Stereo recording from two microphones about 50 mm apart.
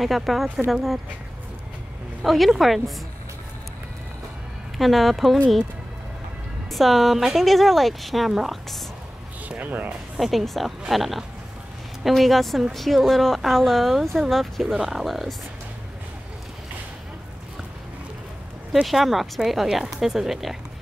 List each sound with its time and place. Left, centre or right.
0.0 s speech: centre
2.2 s speech: centre
4.7 s speech: centre
6.7 s speech: centre
9.6 s speech: right
10.1 s speech: centre
18.7 s speech: centre